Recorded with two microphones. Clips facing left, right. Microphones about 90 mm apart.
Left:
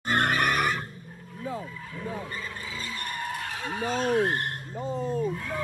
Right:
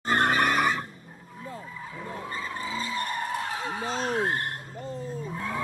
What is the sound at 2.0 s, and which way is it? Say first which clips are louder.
Skidding: left 1 dB; 25° right (ahead or behind).